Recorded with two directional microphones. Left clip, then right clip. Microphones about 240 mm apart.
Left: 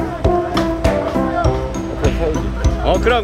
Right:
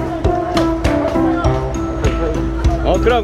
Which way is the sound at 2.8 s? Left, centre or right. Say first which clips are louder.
Even; centre.